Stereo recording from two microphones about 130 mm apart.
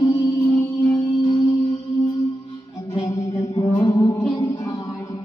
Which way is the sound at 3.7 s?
35° left (ahead or behind).